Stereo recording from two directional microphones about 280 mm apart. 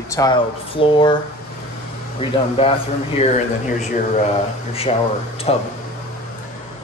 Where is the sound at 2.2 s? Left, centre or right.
Centre.